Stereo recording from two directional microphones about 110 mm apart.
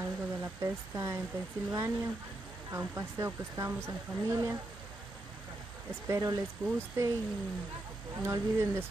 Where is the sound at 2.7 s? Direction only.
30° right (ahead or behind).